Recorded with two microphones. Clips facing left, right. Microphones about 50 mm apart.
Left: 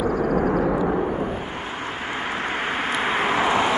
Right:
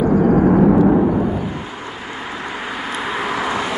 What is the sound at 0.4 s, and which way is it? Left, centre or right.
Vehicle, right.